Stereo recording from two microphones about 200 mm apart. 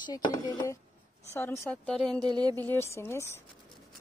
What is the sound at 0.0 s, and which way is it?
Speech, 20° left (ahead or behind).